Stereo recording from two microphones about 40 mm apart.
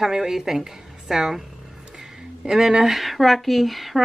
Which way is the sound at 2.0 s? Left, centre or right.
Centre.